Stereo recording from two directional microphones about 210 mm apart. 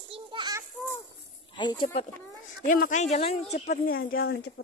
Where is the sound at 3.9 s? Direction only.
45° left (ahead or behind).